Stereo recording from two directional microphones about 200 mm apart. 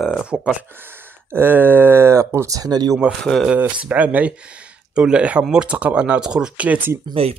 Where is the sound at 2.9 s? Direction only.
Centre (ahead or behind).